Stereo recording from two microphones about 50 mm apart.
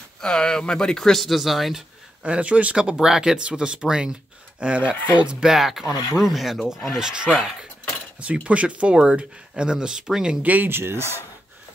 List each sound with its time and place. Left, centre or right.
0.2 s speech: centre
2.2 s speech: right
5.5 s speech: centre
7.0 s speech: centre
8.2 s speech: right
10.4 s speech: right
10.7 s speech: right